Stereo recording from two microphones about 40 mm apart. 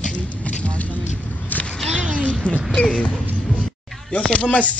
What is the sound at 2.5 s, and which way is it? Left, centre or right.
Music, left.